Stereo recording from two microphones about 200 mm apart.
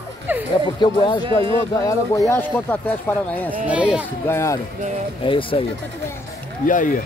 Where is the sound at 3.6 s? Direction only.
5° right (ahead or behind).